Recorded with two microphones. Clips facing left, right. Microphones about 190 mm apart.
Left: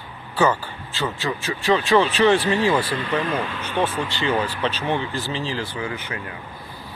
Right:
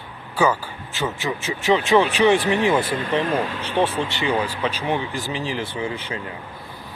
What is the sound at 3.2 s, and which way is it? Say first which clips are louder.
Speech: right 2 dB; 45° right (ahead or behind).